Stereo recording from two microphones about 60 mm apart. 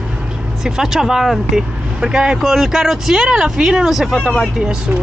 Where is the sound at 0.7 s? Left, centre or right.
Centre.